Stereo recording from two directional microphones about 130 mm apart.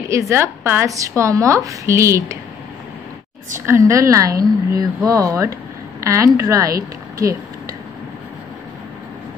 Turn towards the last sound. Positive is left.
turn(degrees=-25)  # may be behind; listen again after turning